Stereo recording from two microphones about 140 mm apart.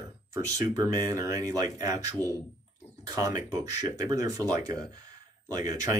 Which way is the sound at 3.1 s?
25° right (ahead or behind).